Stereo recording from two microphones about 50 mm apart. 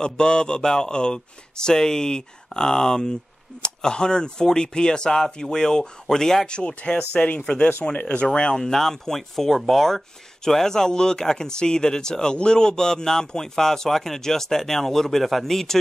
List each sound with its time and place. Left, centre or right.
0.0 s speech: centre
8.3 s speech: centre